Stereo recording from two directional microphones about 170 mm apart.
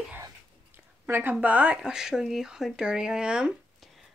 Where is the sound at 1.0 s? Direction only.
10° right (ahead or behind).